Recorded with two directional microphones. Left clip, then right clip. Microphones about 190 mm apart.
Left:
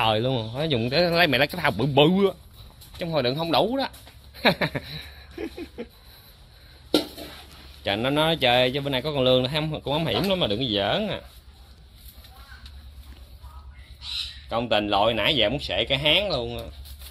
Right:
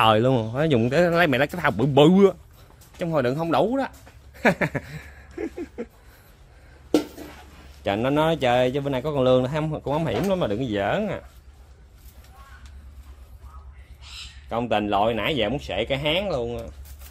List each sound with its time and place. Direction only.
0.0 s speech: 35° right (ahead or behind); by 1.9 s 15° right (ahead or behind)
2.0 s speech: 35° right (ahead or behind)
3.0 s speech: 25° right (ahead or behind)
4.4 s a sound: 20° right (ahead or behind)
7.8 s speech: 20° right (ahead or behind)
14.5 s speech: 15° right (ahead or behind)